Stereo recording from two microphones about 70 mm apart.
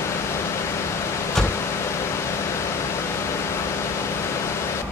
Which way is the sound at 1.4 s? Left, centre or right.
Left.